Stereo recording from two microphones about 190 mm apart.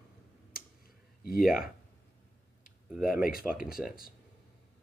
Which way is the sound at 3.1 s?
50° left (ahead or behind).